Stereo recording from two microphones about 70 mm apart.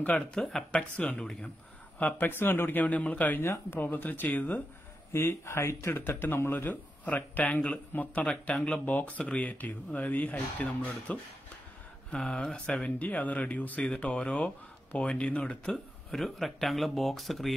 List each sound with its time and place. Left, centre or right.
0.3 s speech: centre
2.0 s speech: left
3.3 s speech: left
5.1 s speech: left; by 15.7 s centre
15.7 s speech: centre